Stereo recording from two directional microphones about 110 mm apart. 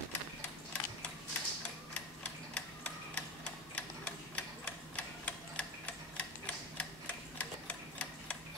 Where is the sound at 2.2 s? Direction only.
15° left (ahead or behind).